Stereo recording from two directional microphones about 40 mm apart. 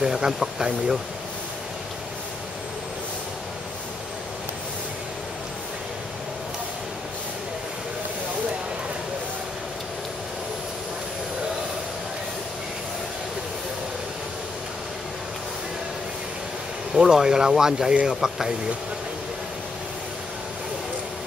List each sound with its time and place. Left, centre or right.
0.0 s speech: centre
16.9 s speech: centre